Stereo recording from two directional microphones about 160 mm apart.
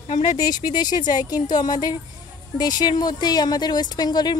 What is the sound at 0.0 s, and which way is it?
Speech, 50° left (ahead or behind).